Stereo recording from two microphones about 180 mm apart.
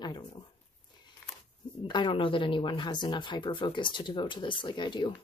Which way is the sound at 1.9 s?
25° left (ahead or behind).